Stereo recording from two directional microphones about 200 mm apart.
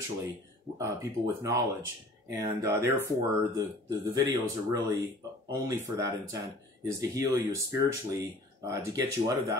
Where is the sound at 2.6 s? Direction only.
15° right (ahead or behind).